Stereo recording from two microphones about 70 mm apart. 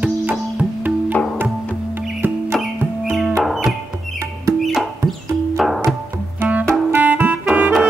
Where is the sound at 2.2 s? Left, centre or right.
Right.